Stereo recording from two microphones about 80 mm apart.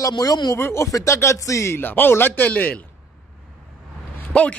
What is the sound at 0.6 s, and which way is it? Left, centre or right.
A man's voice, left.